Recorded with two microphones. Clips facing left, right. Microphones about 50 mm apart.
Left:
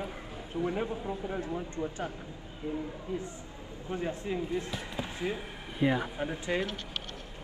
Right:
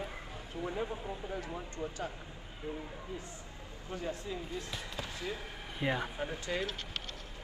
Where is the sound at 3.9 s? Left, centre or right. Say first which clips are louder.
Left 5 dB; left.